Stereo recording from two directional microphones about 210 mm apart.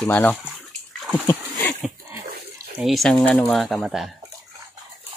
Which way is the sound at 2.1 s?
10° right (ahead or behind).